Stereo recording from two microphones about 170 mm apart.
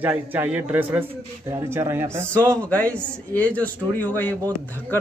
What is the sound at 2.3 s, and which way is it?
Speech, 10° left (ahead or behind).